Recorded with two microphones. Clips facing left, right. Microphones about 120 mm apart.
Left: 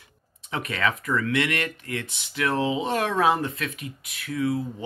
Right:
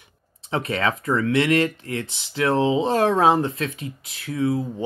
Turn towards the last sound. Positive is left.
turn(degrees=-30)  # may be behind; listen again after turning